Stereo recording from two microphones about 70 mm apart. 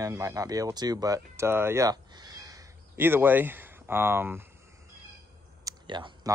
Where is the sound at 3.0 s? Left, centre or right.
Right.